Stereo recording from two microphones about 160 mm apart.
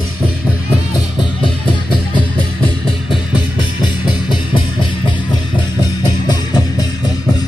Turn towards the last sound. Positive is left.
turn(degrees=25)  # may be behind; listen again after turning